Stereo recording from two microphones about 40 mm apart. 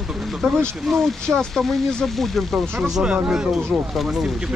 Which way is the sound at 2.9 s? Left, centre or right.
Centre.